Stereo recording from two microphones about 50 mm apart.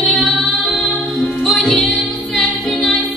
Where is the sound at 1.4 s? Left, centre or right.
Centre.